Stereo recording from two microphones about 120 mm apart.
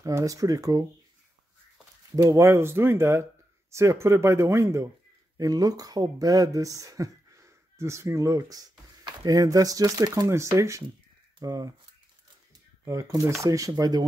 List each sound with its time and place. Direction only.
0.0 s speech: 30° right (ahead or behind)
2.0 s speech: 25° right (ahead or behind)
12.8 s speech: 25° right (ahead or behind)